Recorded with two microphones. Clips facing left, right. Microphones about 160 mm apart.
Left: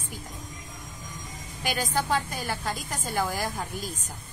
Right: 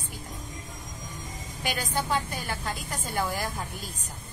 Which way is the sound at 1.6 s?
45° left (ahead or behind).